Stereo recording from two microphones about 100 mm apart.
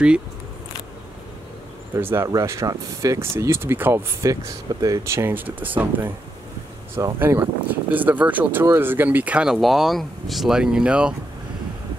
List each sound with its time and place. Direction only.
2.0 s speech: 20° right (ahead or behind)
2.2 s speech: 35° right (ahead or behind)
4.3 s speech: 35° right (ahead or behind); by 6.1 s 20° right (ahead or behind)
7.2 s speech: 20° right (ahead or behind)